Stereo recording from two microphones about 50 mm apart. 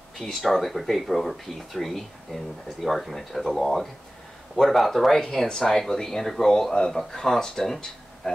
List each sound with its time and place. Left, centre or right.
0.2 s speech: centre